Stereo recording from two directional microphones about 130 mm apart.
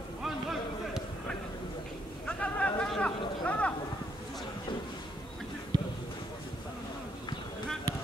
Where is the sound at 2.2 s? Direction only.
10° left (ahead or behind).